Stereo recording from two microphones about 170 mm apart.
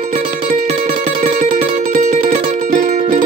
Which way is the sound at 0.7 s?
45° right (ahead or behind).